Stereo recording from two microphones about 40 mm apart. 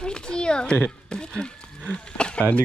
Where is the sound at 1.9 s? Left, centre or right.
Left.